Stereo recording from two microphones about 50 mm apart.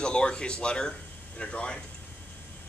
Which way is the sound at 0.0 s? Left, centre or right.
Centre.